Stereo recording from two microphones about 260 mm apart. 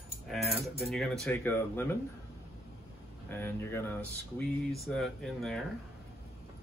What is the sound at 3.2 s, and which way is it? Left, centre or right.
Speech, centre.